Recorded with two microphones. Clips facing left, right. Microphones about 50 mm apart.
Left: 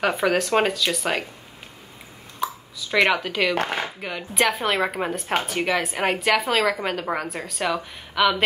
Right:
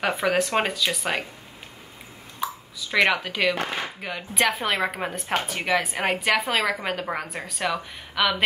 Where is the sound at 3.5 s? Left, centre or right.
Left.